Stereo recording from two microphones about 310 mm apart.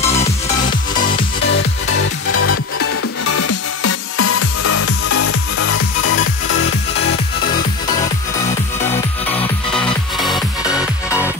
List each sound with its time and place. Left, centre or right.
0.0 s music: left
10.1 s music: centre